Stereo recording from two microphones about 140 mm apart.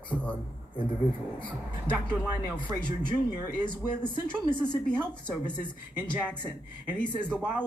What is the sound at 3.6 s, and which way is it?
Speech, 35° left (ahead or behind).